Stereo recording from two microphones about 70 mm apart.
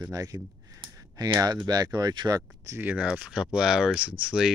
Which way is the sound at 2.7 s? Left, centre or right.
Right.